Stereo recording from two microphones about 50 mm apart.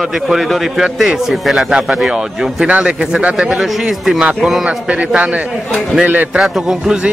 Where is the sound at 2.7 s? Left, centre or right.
Right.